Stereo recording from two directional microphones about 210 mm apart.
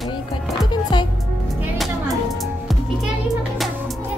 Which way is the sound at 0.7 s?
20° left (ahead or behind).